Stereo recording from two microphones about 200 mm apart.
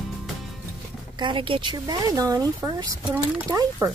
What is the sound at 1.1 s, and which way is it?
Speech, 25° right (ahead or behind).